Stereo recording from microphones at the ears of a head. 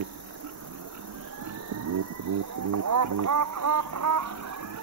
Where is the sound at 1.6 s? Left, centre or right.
Right.